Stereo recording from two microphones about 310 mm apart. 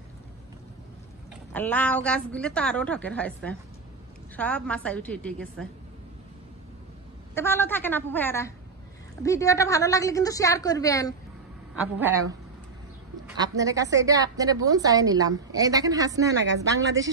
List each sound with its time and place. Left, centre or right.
1.5 s a woman's voice: centre
7.3 s a woman's voice: centre
11.7 s a woman's voice: centre
13.4 s a woman's voice: centre